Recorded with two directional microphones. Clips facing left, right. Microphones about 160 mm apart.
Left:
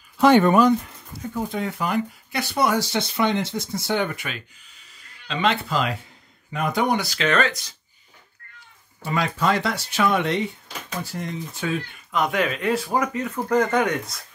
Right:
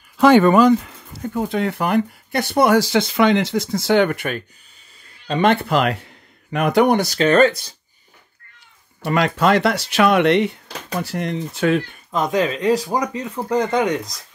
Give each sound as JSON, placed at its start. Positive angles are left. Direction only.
{"t": 0.2, "sound": "speech", "side_deg": -90}
{"t": 1.3, "sound": "speech", "side_deg": -70}
{"t": 2.7, "sound": "speech", "side_deg": -90}
{"t": 7.0, "sound": "speech", "side_deg": -40}
{"t": 9.0, "sound": "speech", "side_deg": -70}
{"t": 12.1, "sound": "speech", "side_deg": -25}